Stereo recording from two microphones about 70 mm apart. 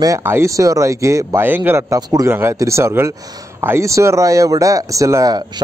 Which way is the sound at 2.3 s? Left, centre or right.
Right.